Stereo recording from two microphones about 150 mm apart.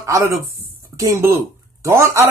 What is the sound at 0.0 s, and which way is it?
Speech, 20° right (ahead or behind).